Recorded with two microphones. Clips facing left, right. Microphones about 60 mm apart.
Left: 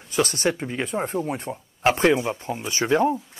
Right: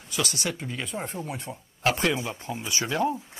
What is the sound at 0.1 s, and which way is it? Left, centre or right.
Speech, left.